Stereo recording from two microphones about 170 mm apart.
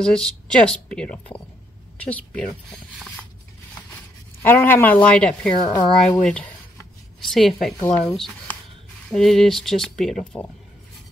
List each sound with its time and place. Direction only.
0.0 s speech: 5° left (ahead or behind)
4.4 s speech: 10° left (ahead or behind)
5.6 s speech: 25° left (ahead or behind)
6.2 s a sound: 10° left (ahead or behind)
7.8 s speech: 15° left (ahead or behind)
9.1 s speech: centre (ahead or behind)